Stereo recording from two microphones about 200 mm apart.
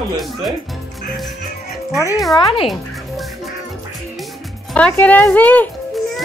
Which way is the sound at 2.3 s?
30° left (ahead or behind).